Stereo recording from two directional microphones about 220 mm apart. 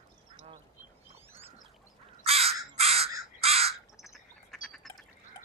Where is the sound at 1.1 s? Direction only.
10° right (ahead or behind).